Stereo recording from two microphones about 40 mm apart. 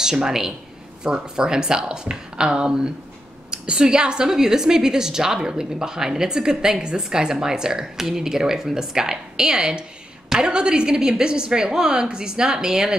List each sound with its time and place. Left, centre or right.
0.0 s a woman's voice: centre